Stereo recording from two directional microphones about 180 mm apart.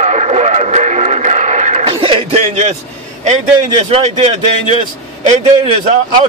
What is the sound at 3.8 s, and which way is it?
A man's voice, 40° right (ahead or behind).